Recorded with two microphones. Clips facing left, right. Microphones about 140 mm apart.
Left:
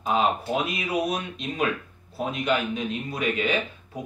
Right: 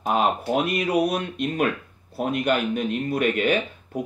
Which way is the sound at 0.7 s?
55° right (ahead or behind).